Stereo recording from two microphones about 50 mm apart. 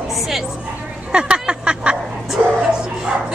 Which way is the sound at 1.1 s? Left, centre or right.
Centre.